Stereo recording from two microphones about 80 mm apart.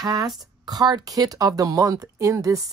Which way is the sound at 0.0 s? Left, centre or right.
Right.